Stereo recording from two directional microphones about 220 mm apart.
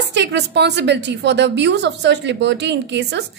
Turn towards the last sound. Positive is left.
turn(degrees=-50)  # may be behind; listen again after turning